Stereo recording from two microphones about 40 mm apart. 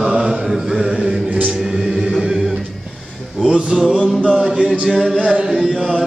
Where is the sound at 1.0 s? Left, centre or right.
Right.